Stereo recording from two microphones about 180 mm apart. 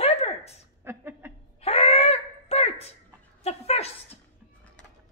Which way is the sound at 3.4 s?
35° left (ahead or behind).